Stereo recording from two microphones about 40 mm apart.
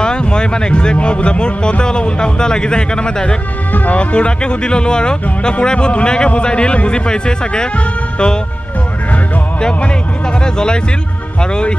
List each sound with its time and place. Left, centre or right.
0.0 s a sound: left
0.9 s speech: left
9.6 s speech: left